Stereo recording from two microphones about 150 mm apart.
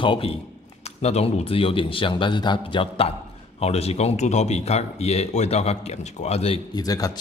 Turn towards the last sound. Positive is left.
turn(degrees=25)  # may be behind; listen again after turning